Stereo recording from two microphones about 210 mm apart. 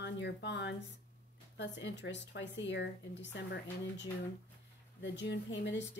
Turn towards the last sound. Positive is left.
turn(degrees=55)  # may be behind; listen again after turning